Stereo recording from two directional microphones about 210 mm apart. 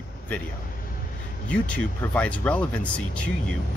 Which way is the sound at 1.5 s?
5° left (ahead or behind).